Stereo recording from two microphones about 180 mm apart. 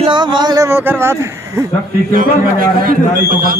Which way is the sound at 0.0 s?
25° right (ahead or behind).